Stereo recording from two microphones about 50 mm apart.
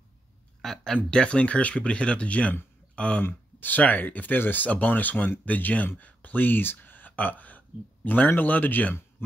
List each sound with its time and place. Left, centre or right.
0.6 s speech: centre
1.1 s speech: left
3.3 s speech: left